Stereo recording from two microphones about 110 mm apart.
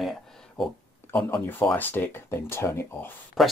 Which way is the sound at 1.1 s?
15° left (ahead or behind).